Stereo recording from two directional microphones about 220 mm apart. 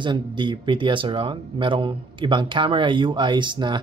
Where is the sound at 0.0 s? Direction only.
20° right (ahead or behind).